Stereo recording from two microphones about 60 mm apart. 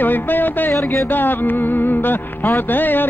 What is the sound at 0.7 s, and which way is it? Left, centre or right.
Music, left.